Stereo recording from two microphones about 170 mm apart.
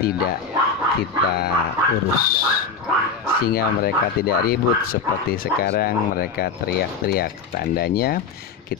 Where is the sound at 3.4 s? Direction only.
65° left (ahead or behind).